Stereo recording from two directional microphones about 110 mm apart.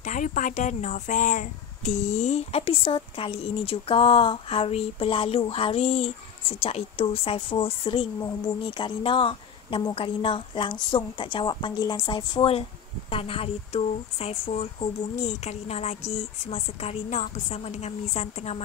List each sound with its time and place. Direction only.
0.7 s a sound: 90° left
1.8 s speech: 90° left; by 8.1 s 50° left (ahead or behind)
8.2 s speech: 35° left (ahead or behind)
8.6 s a woman's voice: 50° left (ahead or behind); by 18.6 s 85° left